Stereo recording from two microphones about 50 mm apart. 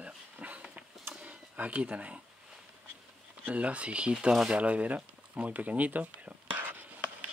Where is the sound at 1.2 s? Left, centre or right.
Right.